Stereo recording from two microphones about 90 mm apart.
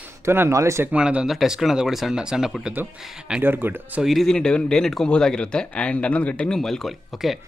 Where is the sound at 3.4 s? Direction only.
25° right (ahead or behind).